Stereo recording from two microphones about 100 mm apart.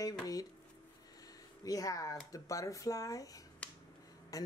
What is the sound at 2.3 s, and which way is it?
Speech, 35° left (ahead or behind).